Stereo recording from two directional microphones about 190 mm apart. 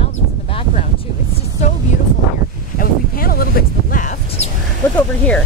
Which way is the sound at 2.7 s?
50° left (ahead or behind).